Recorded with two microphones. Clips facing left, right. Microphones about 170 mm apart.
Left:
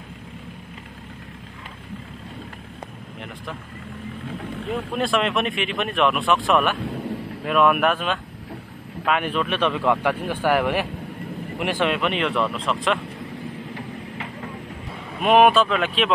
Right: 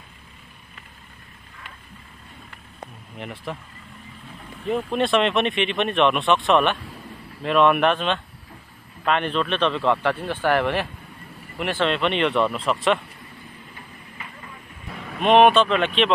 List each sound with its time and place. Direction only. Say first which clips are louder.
4.9 s a man's voice: right 2 dB; centre (ahead or behind)
13.7 s vehicle: left 10 dB; 75° left (ahead or behind)
15.0 s speech: right 1 dB; 5° left (ahead or behind)